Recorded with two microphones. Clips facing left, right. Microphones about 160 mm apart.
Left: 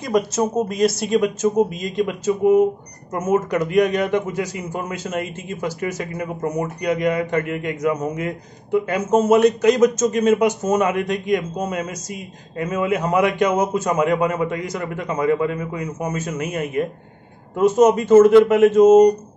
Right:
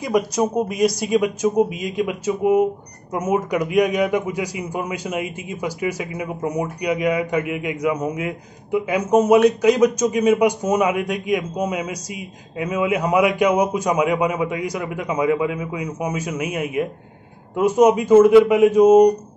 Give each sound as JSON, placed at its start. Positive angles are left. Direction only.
{"t": 0.0, "sound": "a man's voice", "side_deg": -10}